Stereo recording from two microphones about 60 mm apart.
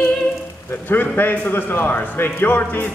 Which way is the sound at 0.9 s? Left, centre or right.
Left.